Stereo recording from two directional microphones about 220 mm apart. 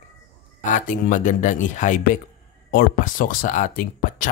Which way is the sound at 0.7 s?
35° left (ahead or behind).